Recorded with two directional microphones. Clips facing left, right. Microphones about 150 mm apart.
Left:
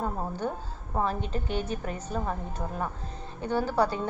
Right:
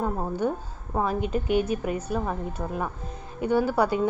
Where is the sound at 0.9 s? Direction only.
10° right (ahead or behind).